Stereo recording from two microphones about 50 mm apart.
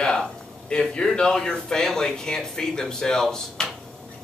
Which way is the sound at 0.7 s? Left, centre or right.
Centre.